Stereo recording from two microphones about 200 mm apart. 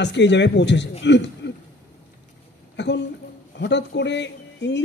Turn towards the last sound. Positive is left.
turn(degrees=60)  # may be behind; listen again after turning